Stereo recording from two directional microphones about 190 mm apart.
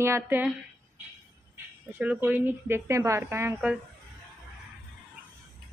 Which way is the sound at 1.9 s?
10° right (ahead or behind).